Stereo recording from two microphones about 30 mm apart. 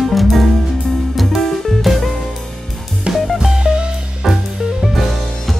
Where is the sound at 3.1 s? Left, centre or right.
Right.